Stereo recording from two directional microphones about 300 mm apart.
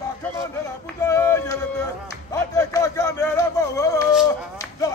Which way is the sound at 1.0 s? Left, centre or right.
Centre.